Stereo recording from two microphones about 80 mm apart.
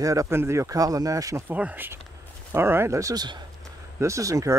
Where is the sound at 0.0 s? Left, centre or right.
Right.